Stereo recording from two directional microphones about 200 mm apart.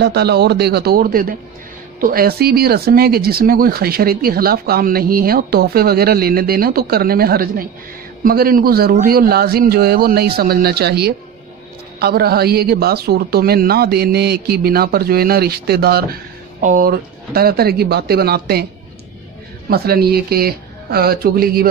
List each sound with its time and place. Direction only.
0.0 s speech: 55° right (ahead or behind)
19.7 s speech: 50° right (ahead or behind)